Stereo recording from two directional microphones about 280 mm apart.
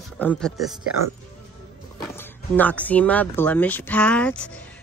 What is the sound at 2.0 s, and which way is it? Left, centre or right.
Speech, centre.